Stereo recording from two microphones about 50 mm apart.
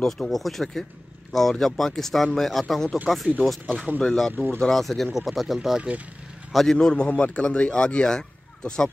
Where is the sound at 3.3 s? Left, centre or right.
Right.